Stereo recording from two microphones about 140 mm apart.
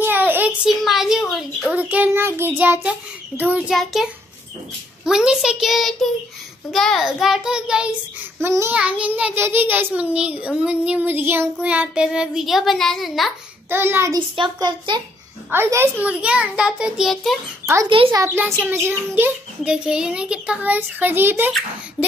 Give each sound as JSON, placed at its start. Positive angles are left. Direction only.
{"t": 0.0, "sound": "child singing", "side_deg": -15}
{"t": 0.7, "sound": "a sound", "side_deg": 0}
{"t": 1.8, "sound": "a child's voice", "side_deg": -10}
{"t": 8.4, "sound": "a child's voice", "side_deg": -15}
{"t": 13.7, "sound": "a child's voice", "side_deg": -15}
{"t": 14.3, "sound": "speech", "side_deg": -35}
{"t": 15.5, "sound": "a child's voice", "side_deg": -15}
{"t": 17.8, "sound": "speech", "side_deg": -40}
{"t": 18.1, "sound": "a child's voice", "side_deg": -20}